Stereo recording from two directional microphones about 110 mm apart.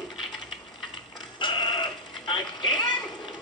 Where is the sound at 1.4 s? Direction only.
45° left (ahead or behind).